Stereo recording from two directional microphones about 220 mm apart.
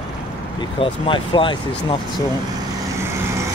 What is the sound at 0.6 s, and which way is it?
Speech, 20° left (ahead or behind).